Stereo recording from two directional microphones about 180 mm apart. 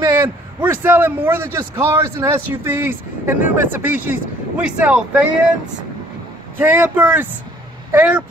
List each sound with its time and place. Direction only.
0.0 s a man's voice: 10° right (ahead or behind)
6.6 s a man's voice: 10° right (ahead or behind)